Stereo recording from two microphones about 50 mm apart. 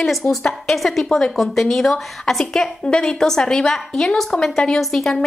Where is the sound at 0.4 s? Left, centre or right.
Centre.